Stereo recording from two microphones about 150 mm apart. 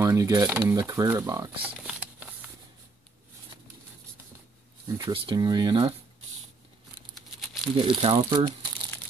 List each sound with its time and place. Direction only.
0.0 s speech: 20° right (ahead or behind)
1.6 s shuffling cards: 10° right (ahead or behind)
4.8 s speech: 25° right (ahead or behind)
7.2 s crumpling: centre (ahead or behind)
7.8 s speech: 35° right (ahead or behind)